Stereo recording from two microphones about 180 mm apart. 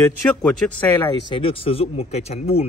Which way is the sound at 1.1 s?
30° left (ahead or behind).